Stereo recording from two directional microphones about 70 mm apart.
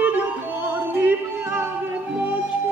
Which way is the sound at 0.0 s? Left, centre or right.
Right.